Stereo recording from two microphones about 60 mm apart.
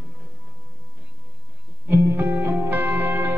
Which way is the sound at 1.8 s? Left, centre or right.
Right.